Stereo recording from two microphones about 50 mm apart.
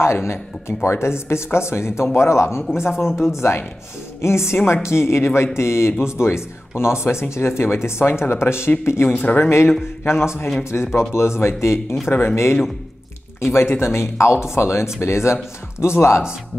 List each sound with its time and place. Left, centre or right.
0.0 s speech: left
3.3 s speech: left
9.1 s speech: left
10.0 s speech: left
12.1 s speech: left
13.4 s speech: left